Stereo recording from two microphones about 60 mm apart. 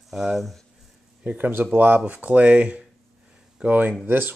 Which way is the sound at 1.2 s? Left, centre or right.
Right.